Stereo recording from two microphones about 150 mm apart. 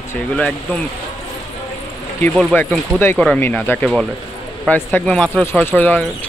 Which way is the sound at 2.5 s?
10° left (ahead or behind).